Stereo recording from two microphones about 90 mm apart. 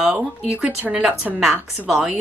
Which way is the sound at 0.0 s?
10° right (ahead or behind).